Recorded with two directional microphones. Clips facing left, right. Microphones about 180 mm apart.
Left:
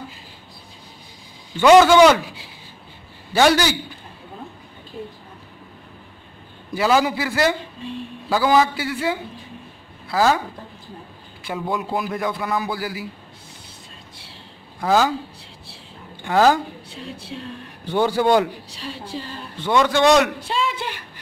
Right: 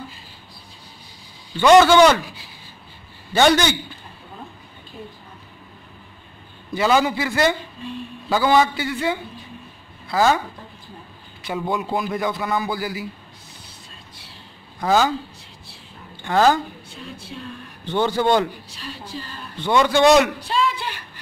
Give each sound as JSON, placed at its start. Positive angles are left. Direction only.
{"t": 1.5, "sound": "a man's voice", "side_deg": 5}
{"t": 3.3, "sound": "a man's voice", "side_deg": 5}
{"t": 6.7, "sound": "a man's voice", "side_deg": 5}
{"t": 11.4, "sound": "a man's voice", "side_deg": 0}
{"t": 14.8, "sound": "a man's voice", "side_deg": 5}
{"t": 16.2, "sound": "a woman's voice", "side_deg": 10}
{"t": 17.8, "sound": "a man's voice", "side_deg": 10}
{"t": 19.1, "sound": "a sound", "side_deg": 25}
{"t": 19.6, "sound": "a man's voice", "side_deg": 0}
{"t": 20.3, "sound": "a sound", "side_deg": 20}